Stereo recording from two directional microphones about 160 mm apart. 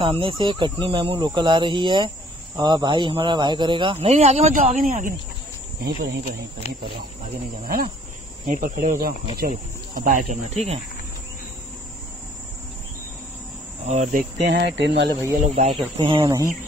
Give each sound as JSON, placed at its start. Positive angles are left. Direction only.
{"t": 0.0, "sound": "speech", "side_deg": -30}
{"t": 5.8, "sound": "speech", "side_deg": -80}
{"t": 7.2, "sound": "cricket", "side_deg": -60}
{"t": 8.5, "sound": "cricket", "side_deg": -50}
{"t": 9.4, "sound": "speech", "side_deg": -60}
{"t": 13.8, "sound": "speech", "side_deg": -45}
{"t": 14.8, "sound": "speech", "side_deg": -90}
{"t": 15.5, "sound": "speech", "side_deg": -35}